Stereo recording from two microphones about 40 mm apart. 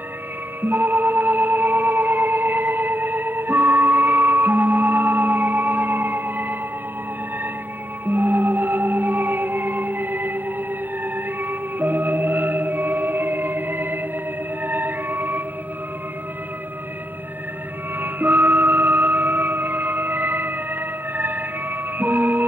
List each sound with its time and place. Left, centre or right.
0.6 s music: right
8.1 s music: right
18.0 s music: right
21.2 s emergency vehicle: right